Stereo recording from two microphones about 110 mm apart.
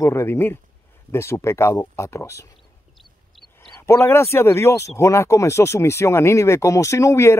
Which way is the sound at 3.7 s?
25° left (ahead or behind).